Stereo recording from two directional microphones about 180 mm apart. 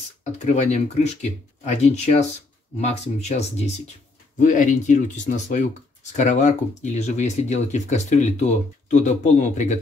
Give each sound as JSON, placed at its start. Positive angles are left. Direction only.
{"t": 0.2, "sound": "speech", "side_deg": 40}